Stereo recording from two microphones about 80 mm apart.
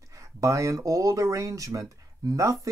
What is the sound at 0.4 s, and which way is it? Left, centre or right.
Speech, right.